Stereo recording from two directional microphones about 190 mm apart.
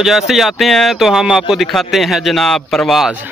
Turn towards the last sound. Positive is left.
turn(degrees=0)  # may be behind; listen again after turning